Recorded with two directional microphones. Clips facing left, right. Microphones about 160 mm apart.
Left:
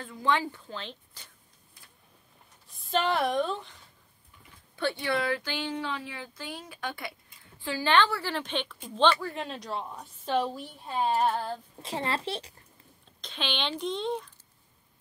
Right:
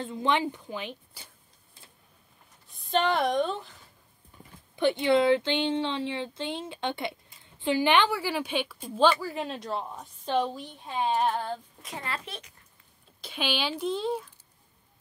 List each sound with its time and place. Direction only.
0.0 s a woman's voice: 20° right (ahead or behind)
2.7 s speech: centre (ahead or behind)
4.7 s a woman's voice: 20° right (ahead or behind); by 11.5 s 5° left (ahead or behind)
11.8 s a woman's voice: 30° left (ahead or behind)
13.2 s speech: 10° right (ahead or behind)